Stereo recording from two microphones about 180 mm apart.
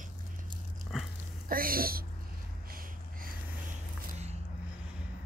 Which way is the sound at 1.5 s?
55° right (ahead or behind).